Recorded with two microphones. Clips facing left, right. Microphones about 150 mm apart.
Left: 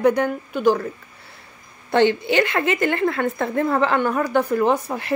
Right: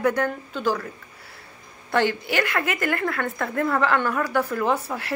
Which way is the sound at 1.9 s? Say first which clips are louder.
Left 5 dB; 25° left (ahead or behind).